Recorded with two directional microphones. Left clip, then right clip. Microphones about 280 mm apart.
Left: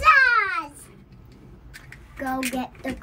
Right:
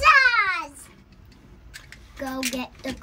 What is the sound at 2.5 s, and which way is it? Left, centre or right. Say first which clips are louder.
Speech: left 2 dB; centre.